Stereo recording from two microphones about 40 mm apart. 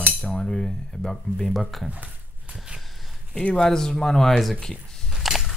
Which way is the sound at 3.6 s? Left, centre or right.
Centre.